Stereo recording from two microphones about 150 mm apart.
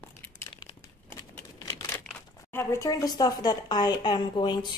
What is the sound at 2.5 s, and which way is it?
A woman's voice, 20° left (ahead or behind).